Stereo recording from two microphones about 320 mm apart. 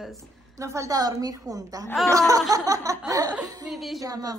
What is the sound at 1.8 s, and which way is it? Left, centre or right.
Speech, centre.